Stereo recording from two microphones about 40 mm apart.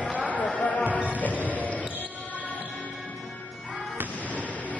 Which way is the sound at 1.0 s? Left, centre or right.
Left.